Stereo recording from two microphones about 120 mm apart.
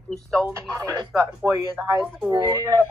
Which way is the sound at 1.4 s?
25° right (ahead or behind).